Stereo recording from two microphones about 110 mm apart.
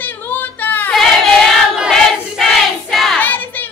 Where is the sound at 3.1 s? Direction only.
15° left (ahead or behind).